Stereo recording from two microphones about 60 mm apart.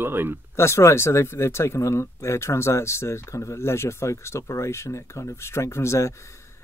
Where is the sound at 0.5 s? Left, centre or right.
Left.